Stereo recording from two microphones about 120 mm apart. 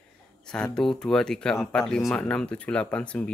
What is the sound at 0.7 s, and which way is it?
Speech, 5° left (ahead or behind).